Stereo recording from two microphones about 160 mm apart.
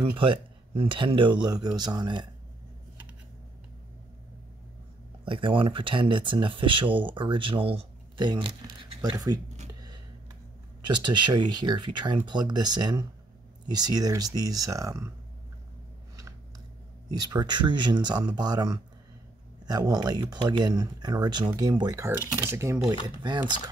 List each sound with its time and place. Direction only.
0.2 s speech: 35° right (ahead or behind)
5.2 s speech: 35° right (ahead or behind)
10.9 s speech: 30° right (ahead or behind)
17.1 s speech: 25° right (ahead or behind)
23.0 s speech: 25° right (ahead or behind)